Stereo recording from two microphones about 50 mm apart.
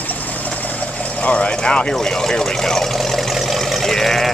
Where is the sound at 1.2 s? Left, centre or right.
Left.